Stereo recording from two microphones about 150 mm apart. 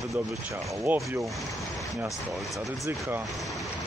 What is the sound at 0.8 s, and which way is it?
Speech, 20° right (ahead or behind).